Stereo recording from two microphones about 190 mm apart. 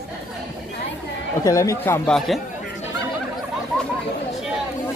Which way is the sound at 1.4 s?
15° left (ahead or behind).